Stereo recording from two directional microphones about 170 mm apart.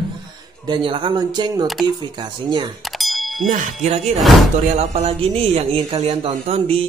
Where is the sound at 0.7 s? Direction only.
30° right (ahead or behind).